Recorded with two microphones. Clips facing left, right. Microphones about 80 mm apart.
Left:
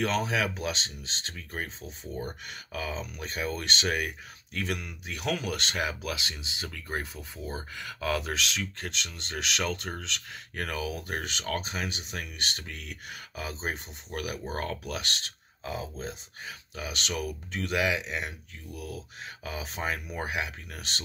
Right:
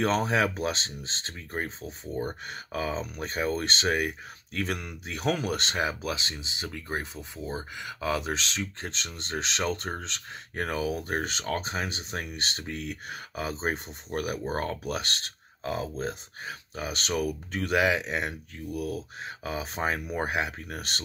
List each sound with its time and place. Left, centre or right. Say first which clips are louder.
0.0 s speech: right 3 dB; right